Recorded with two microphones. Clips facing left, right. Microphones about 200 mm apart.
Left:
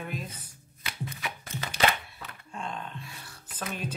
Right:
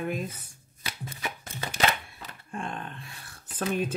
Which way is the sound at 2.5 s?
55° right (ahead or behind).